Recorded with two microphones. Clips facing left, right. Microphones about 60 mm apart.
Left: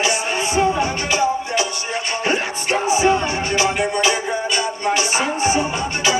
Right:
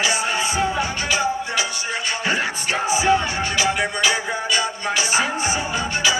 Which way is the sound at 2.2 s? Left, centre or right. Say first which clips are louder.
Left 2 dB; left.